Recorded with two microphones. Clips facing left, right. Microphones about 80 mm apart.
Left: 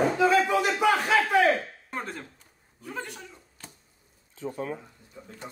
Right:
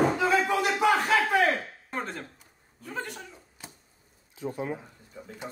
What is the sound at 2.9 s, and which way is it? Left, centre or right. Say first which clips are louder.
Music: right 1 dB; centre.